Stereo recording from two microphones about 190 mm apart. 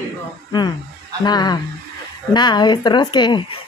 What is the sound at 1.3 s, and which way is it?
Speech, 20° left (ahead or behind).